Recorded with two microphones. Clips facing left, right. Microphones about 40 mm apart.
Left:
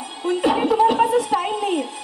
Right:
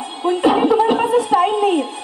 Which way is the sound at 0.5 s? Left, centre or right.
Right.